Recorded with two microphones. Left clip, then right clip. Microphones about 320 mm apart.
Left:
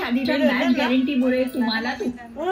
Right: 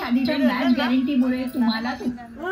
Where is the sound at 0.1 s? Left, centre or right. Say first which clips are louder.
Left 1 dB; right.